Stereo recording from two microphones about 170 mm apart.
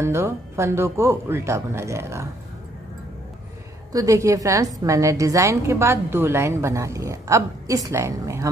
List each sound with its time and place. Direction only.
0.0 s a woman's voice: 15° right (ahead or behind)
3.9 s a woman's voice: 20° right (ahead or behind)